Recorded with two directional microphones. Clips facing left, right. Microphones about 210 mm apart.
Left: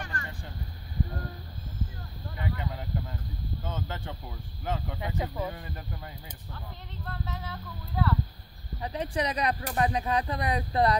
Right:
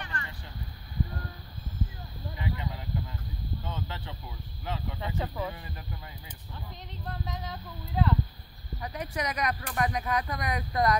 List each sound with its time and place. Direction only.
0.0 s vehicle: 45° left (ahead or behind)
2.3 s a sound: 50° left (ahead or behind)
4.6 s speech: 45° left (ahead or behind)
5.0 s speech: 10° left (ahead or behind)
7.1 s speech: 15° right (ahead or behind)
8.8 s speech: 30° left (ahead or behind)